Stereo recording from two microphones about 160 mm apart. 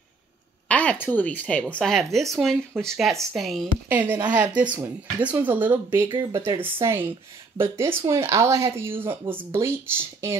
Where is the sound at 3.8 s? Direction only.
10° right (ahead or behind).